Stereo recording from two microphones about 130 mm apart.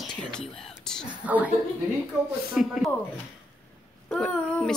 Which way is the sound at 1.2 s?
10° right (ahead or behind).